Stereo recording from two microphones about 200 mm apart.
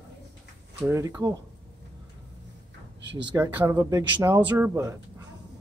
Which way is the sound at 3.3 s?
10° right (ahead or behind).